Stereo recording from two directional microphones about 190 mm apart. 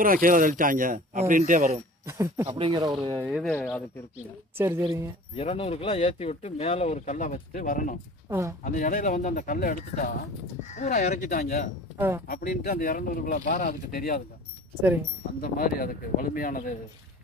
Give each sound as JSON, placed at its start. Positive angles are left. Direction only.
{"t": 0.0, "sound": "speech", "side_deg": -45}
{"t": 2.0, "sound": "speech", "side_deg": -15}
{"t": 3.1, "sound": "speech", "side_deg": -5}
{"t": 3.5, "sound": "speech", "side_deg": 10}
{"t": 4.6, "sound": "speech", "side_deg": -10}
{"t": 5.3, "sound": "speech", "side_deg": 30}
{"t": 8.3, "sound": "speech", "side_deg": -15}
{"t": 8.6, "sound": "speech", "side_deg": 45}
{"t": 11.2, "sound": "speech", "side_deg": 50}
{"t": 14.8, "sound": "speech", "side_deg": -10}
{"t": 15.4, "sound": "speech", "side_deg": 50}